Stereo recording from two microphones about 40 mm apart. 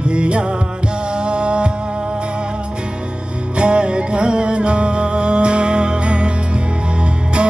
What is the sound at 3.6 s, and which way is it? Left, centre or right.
Music, right.